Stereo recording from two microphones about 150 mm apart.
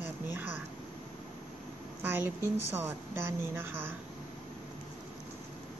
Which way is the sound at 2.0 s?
15° right (ahead or behind).